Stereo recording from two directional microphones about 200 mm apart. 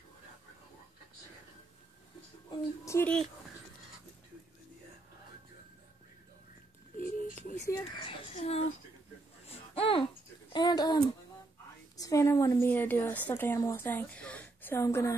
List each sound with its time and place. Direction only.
2.5 s a woman's voice: 15° left (ahead or behind)
7.0 s a sound: 45° left (ahead or behind)
7.6 s speech: 20° left (ahead or behind)
8.4 s speech: 30° left (ahead or behind)
9.5 s babbling: 30° left (ahead or behind)
10.5 s a sound: 20° left (ahead or behind)
12.0 s a woman's voice: 15° left (ahead or behind)